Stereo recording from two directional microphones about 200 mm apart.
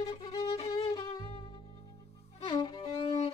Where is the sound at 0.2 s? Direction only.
25° left (ahead or behind).